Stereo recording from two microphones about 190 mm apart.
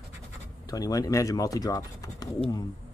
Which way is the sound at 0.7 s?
20° left (ahead or behind).